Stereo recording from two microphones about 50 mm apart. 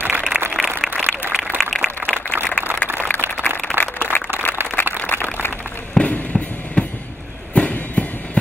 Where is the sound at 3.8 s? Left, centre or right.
Right.